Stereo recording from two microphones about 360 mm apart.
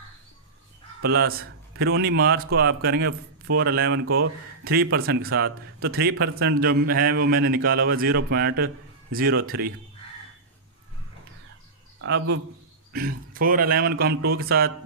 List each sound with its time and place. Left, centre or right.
1.0 s speech: right
12.0 s speech: right